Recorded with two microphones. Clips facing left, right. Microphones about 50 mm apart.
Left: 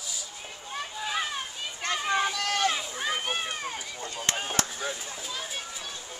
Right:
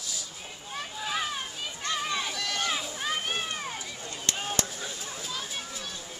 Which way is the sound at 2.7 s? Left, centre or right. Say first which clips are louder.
Left 2 dB; centre.